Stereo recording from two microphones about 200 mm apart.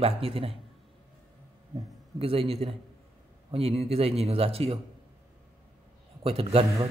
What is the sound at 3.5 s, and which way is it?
Speech, 30° right (ahead or behind).